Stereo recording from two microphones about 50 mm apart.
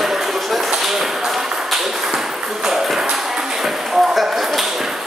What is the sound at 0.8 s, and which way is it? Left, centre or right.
Tap, centre.